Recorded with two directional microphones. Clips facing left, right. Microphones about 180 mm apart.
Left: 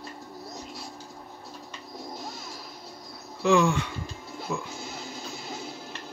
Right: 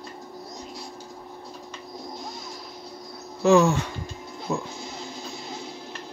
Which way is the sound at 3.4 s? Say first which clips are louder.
Right 4 dB; 40° right (ahead or behind).